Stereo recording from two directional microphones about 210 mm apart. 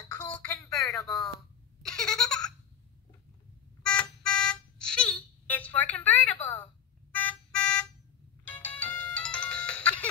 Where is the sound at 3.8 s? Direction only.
5° left (ahead or behind).